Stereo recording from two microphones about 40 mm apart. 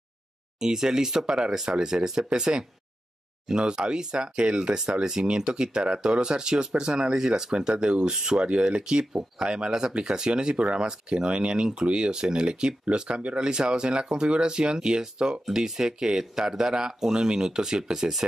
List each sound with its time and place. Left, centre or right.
0.6 s speech: centre